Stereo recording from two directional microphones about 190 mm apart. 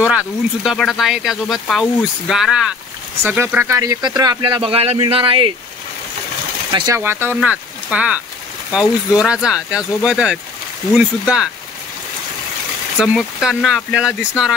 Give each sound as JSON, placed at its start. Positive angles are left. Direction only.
{"t": 0.7, "sound": "speech", "side_deg": 0}
{"t": 6.7, "sound": "speech", "side_deg": -15}
{"t": 13.0, "sound": "speech", "side_deg": -5}